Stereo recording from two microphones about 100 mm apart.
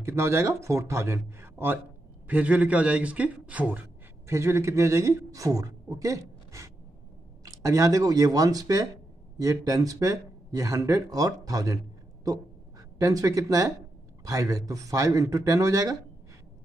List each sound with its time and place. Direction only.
0.0 s a man's voice: 25° right (ahead or behind)
4.3 s a man's voice: 25° right (ahead or behind)
13.0 s speech: 35° right (ahead or behind)